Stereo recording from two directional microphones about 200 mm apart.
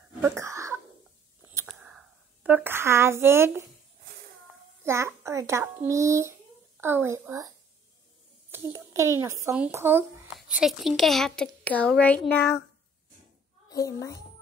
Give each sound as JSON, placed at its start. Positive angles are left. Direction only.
{"t": 0.2, "sound": "cough", "side_deg": -15}
{"t": 1.4, "sound": "a sound", "side_deg": -15}
{"t": 1.7, "sound": "a sound", "side_deg": -5}
{"t": 4.8, "sound": "a child's voice", "side_deg": -15}
{"t": 8.7, "sound": "a child's voice", "side_deg": -15}
{"t": 10.3, "sound": "speech", "side_deg": 0}
{"t": 13.7, "sound": "a child's voice", "side_deg": 15}